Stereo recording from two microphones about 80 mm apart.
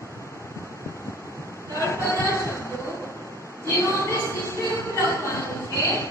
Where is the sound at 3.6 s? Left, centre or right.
Left.